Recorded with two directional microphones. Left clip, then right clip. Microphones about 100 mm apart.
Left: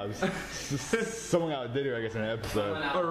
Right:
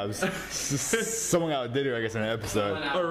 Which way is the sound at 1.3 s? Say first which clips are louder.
Right 3 dB; 50° right (ahead or behind).